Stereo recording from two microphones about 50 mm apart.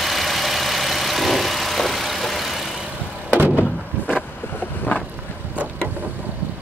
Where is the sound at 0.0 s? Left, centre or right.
Centre.